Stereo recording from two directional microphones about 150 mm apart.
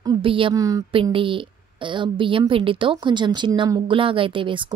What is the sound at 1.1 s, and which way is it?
A woman's voice, 35° right (ahead or behind).